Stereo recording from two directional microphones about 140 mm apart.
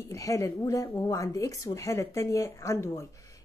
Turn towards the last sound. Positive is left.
turn(degrees=20)  # may be behind; listen again after turning